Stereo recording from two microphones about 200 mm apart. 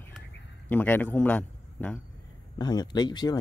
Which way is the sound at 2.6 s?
20° left (ahead or behind).